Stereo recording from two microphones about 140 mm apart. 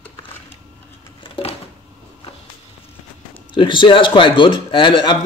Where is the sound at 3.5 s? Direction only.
35° left (ahead or behind).